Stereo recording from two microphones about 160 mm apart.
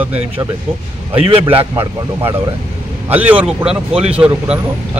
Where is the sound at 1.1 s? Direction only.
35° right (ahead or behind).